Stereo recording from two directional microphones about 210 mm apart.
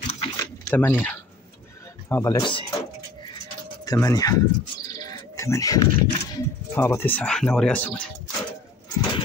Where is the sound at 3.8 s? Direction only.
15° left (ahead or behind).